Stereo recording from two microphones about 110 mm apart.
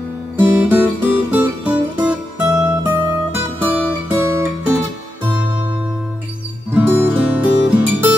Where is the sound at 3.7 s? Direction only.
20° right (ahead or behind).